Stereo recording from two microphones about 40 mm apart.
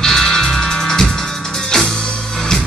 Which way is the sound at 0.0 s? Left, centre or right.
Centre.